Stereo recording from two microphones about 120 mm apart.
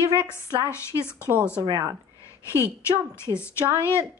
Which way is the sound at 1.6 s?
30° right (ahead or behind).